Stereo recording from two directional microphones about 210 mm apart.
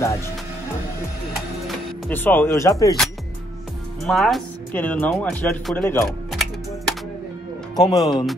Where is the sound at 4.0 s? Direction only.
Centre (ahead or behind).